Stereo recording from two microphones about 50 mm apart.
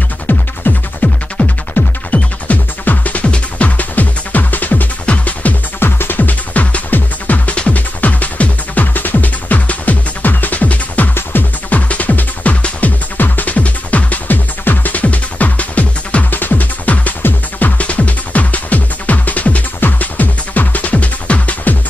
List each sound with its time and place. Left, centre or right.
0.3 s music: left
5.8 s music: left
11.1 s music: left
11.9 s music: left